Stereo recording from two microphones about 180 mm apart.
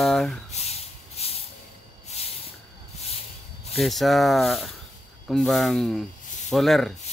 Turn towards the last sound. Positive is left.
turn(degrees=0)  # may be behind; listen again after turning